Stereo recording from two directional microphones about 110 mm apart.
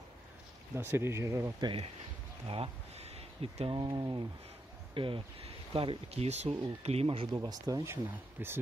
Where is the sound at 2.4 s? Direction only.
60° right (ahead or behind).